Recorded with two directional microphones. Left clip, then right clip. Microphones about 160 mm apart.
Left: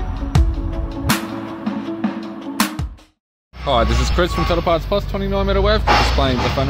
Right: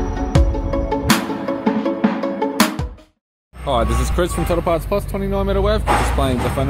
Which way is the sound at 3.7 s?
5° right (ahead or behind).